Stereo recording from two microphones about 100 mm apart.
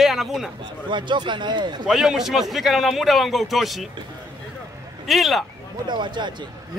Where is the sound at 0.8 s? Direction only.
50° right (ahead or behind).